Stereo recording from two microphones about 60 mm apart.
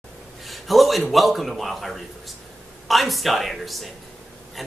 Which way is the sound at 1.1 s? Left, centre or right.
Centre.